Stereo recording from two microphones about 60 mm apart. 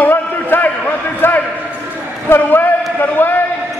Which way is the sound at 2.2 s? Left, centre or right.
Left.